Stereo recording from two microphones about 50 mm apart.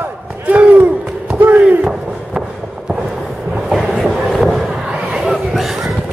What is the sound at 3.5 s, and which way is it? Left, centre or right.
Train, centre.